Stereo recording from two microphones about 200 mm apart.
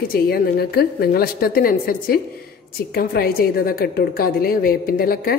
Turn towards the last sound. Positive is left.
turn(degrees=50)  # may be behind; listen again after turning